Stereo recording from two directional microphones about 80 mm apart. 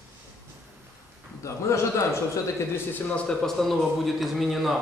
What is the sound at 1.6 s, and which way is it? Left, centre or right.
Speech, left.